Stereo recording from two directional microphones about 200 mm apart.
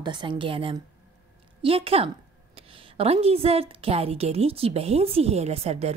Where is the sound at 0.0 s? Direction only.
20° right (ahead or behind).